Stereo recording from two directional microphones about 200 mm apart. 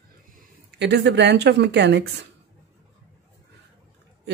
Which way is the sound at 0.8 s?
60° right (ahead or behind).